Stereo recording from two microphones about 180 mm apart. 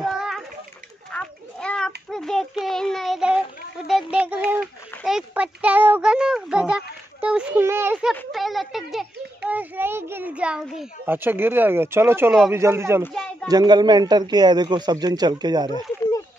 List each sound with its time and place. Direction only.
0.0 s a sound: centre (ahead or behind)
1.1 s children playing: 5° left (ahead or behind)
2.0 s child singing: centre (ahead or behind)
3.8 s a child's voice: 5° right (ahead or behind)
8.1 s a child's voice: centre (ahead or behind); by 15.7 s 20° right (ahead or behind)